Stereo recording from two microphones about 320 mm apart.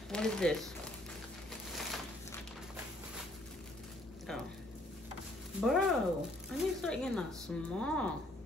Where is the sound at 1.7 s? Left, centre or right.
Centre.